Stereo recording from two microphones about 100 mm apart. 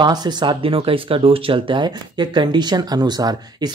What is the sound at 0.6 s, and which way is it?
Speech, 65° right (ahead or behind).